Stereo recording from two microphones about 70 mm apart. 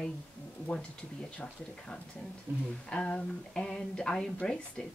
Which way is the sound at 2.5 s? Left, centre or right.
Right.